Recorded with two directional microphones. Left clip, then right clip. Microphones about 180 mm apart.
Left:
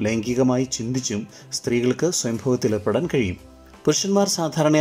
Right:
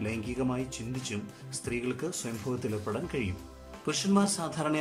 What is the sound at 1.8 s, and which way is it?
Speech, 40° left (ahead or behind).